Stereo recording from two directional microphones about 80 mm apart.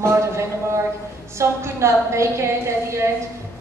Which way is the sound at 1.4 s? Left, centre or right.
Right.